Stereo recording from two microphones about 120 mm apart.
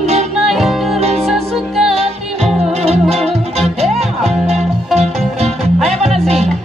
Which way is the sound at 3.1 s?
60° right (ahead or behind).